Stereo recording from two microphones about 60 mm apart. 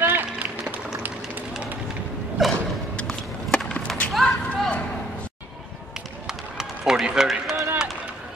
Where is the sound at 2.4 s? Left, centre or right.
Centre.